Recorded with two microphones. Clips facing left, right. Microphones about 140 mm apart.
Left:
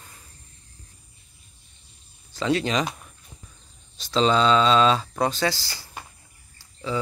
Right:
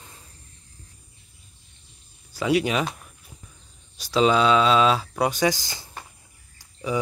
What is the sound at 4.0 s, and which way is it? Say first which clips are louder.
Speech: right 1 dB; 10° right (ahead or behind).